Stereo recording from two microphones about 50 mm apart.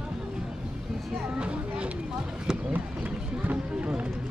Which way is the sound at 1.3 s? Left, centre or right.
Right.